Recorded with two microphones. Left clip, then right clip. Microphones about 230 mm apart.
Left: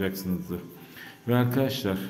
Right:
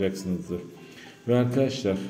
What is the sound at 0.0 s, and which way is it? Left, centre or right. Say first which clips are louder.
A man's voice: right 3 dB; centre.